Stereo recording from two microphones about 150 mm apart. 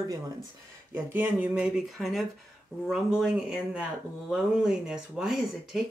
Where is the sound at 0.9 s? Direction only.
15° right (ahead or behind).